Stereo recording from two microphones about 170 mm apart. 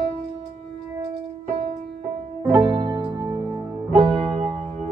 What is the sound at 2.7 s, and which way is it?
Music, 25° right (ahead or behind).